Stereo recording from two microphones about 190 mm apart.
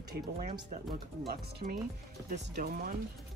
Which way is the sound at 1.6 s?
45° right (ahead or behind).